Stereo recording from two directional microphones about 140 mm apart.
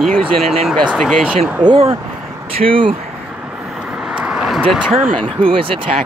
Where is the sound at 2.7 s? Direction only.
40° right (ahead or behind).